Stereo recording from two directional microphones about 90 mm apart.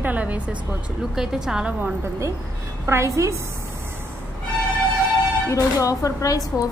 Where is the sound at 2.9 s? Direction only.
35° right (ahead or behind).